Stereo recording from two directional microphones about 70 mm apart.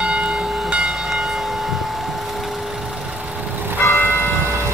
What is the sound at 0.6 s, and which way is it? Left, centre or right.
Train, centre.